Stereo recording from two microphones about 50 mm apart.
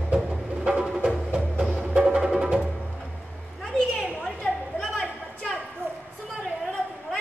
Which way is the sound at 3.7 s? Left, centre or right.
Centre.